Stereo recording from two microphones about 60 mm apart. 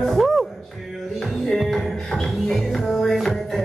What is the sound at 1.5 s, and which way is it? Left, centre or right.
Music, centre.